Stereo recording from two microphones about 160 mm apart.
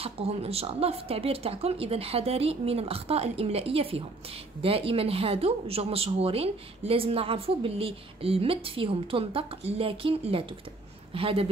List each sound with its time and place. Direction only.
0.0 s speech: 40° right (ahead or behind)